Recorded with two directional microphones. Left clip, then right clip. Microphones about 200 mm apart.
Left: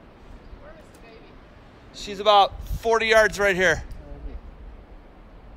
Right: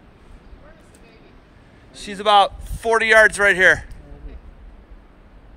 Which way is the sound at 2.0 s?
30° left (ahead or behind).